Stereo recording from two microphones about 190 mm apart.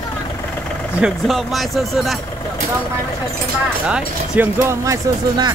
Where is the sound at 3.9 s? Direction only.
10° right (ahead or behind).